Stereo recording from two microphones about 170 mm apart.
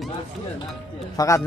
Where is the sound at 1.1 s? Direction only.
20° left (ahead or behind).